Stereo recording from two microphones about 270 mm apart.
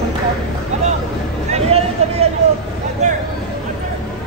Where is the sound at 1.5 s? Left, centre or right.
Right.